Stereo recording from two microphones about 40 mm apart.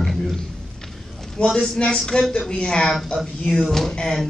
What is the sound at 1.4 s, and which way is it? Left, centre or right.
A man's voice, left.